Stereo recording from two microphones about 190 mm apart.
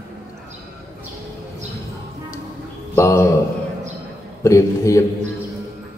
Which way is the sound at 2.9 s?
15° left (ahead or behind).